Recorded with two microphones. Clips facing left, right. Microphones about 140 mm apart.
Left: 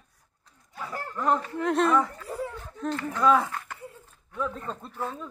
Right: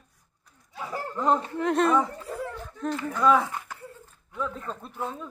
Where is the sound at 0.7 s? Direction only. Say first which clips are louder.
Right 2 dB; 20° right (ahead or behind).